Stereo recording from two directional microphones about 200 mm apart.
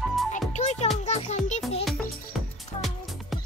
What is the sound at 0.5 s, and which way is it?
Music, 35° left (ahead or behind).